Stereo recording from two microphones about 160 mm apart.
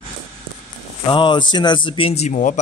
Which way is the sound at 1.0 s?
30° left (ahead or behind).